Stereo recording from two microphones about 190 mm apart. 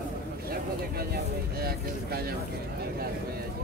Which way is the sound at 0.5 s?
55° right (ahead or behind).